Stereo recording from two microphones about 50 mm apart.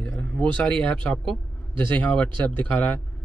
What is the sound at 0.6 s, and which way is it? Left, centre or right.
Speech, centre.